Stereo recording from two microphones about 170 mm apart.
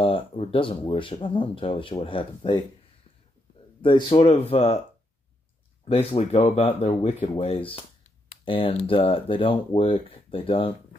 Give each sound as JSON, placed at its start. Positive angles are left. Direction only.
{"t": 0.0, "sound": "speech", "side_deg": 30}
{"t": 3.8, "sound": "speech", "side_deg": 30}
{"t": 5.9, "sound": "speech", "side_deg": 35}